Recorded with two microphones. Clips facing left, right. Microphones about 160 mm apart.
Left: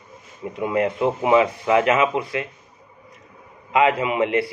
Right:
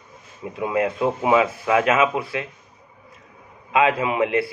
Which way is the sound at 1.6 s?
20° left (ahead or behind).